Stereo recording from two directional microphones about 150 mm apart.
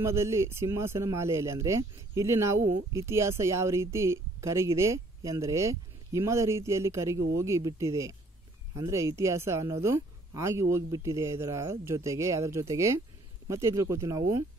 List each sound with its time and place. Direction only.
0.0 s speech: 20° right (ahead or behind)